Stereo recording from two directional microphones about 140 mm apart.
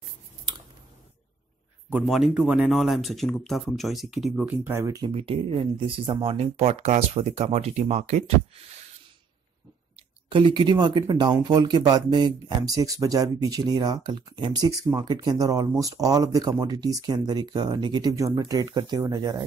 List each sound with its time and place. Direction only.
2.0 s speech: centre (ahead or behind)
4.6 s speech: 20° right (ahead or behind)
5.0 s speech: 40° right (ahead or behind)
10.3 s speech: 35° right (ahead or behind)